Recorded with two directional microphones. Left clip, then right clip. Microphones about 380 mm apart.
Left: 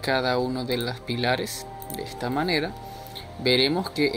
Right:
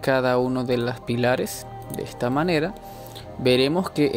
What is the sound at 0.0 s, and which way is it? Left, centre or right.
Speech, right.